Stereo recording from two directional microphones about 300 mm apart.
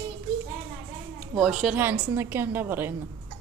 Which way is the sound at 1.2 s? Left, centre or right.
Centre.